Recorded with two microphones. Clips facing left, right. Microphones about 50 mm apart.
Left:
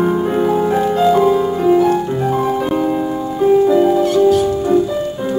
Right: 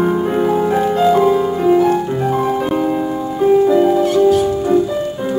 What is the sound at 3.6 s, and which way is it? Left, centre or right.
Music, centre.